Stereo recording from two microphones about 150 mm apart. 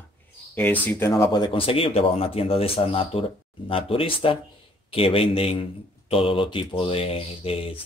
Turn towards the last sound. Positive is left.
turn(degrees=40)  # may be behind; listen again after turning